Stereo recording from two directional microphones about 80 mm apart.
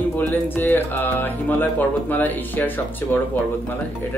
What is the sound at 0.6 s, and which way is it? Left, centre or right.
Speech, left.